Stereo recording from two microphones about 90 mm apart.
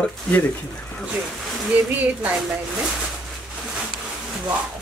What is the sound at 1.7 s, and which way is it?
Speech, 15° right (ahead or behind).